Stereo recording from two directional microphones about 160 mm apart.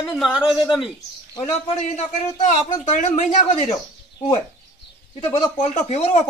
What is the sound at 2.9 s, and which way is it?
Speech, 50° left (ahead or behind).